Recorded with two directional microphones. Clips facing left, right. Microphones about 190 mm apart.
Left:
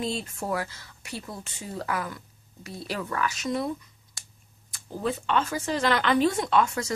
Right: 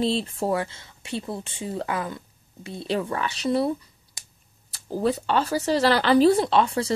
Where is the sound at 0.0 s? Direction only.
30° right (ahead or behind).